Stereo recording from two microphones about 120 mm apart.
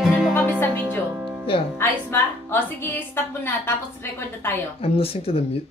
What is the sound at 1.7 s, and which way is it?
Music, 20° left (ahead or behind).